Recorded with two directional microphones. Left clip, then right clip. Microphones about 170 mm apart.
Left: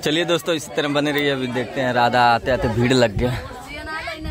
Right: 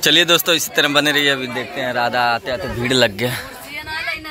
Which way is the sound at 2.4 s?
40° left (ahead or behind).